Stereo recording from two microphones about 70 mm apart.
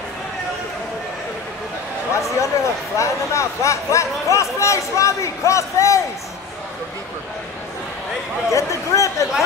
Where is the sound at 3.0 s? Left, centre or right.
Left.